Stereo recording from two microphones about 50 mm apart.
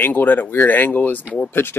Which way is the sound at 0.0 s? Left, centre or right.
Left.